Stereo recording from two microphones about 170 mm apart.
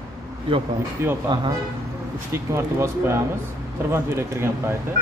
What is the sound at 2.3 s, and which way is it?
Speech, 15° right (ahead or behind).